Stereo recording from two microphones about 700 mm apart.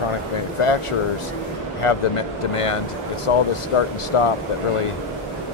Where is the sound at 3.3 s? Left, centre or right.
Left.